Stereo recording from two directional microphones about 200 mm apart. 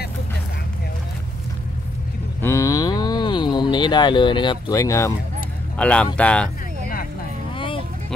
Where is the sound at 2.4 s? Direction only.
15° left (ahead or behind).